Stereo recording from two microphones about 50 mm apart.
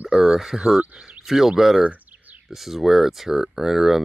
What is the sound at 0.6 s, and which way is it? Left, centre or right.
Speech, centre.